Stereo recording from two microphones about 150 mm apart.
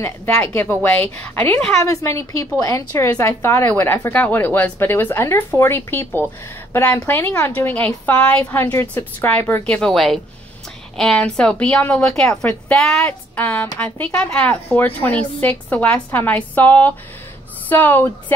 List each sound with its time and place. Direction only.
0.0 s a woman's voice: 15° left (ahead or behind)